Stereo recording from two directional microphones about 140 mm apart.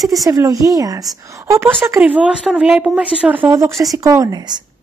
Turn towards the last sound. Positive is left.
turn(degrees=-30)  # may be behind; listen again after turning